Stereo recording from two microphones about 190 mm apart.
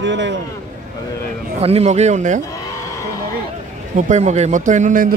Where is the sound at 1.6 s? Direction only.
35° right (ahead or behind).